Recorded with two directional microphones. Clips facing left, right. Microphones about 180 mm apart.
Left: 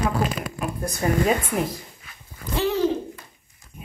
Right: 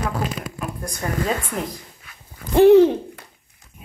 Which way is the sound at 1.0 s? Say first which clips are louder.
Left 3 dB; 15° left (ahead or behind).